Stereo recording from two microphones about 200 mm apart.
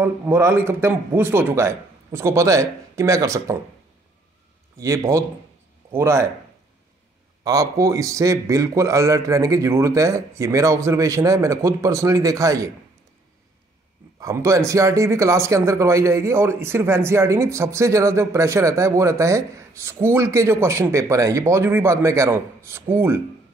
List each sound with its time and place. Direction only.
0.0 s speech: 10° right (ahead or behind)
4.7 s speech: 15° right (ahead or behind)
7.4 s speech: 15° right (ahead or behind)
14.2 s speech: 15° right (ahead or behind)